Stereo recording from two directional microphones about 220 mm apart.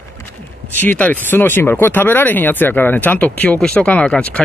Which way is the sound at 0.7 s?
10° left (ahead or behind).